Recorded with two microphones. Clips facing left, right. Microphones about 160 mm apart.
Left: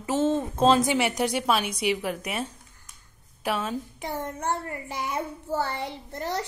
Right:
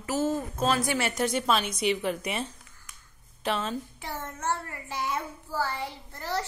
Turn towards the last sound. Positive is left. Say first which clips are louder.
# left 2 dB
turn(degrees=20)  # may be behind; listen again after turning